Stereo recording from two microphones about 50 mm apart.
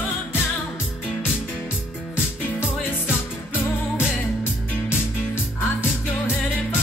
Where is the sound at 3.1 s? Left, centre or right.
Left.